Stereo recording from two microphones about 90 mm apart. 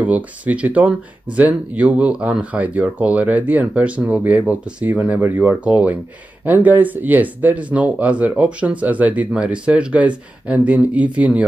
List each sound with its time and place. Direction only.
0.0 s speech: 15° right (ahead or behind)